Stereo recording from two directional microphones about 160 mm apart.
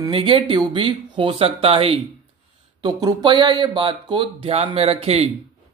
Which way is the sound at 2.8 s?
25° right (ahead or behind).